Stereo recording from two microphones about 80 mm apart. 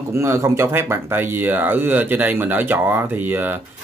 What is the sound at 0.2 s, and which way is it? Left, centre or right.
Speech, right.